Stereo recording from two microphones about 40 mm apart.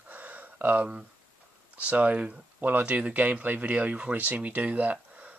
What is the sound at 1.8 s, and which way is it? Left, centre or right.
Speech, right.